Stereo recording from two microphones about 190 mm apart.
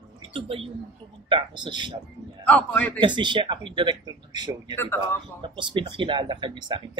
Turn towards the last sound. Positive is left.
turn(degrees=-25)  # may be behind; listen again after turning